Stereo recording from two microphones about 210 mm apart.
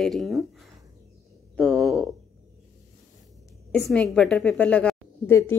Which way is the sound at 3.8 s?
Centre (ahead or behind).